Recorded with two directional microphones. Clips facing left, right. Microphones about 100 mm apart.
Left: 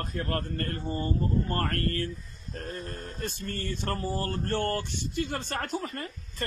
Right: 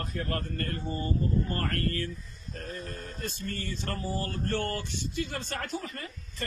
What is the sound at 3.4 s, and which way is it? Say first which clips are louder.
A man's voice: left 3 dB; 45° left (ahead or behind).